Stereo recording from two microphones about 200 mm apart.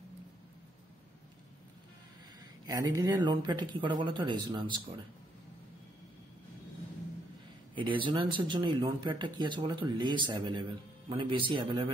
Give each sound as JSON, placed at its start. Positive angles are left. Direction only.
{"t": 2.6, "sound": "speech", "side_deg": -20}
{"t": 7.7, "sound": "speech", "side_deg": -25}